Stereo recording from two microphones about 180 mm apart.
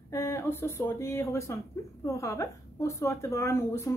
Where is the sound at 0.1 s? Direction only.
15° left (ahead or behind).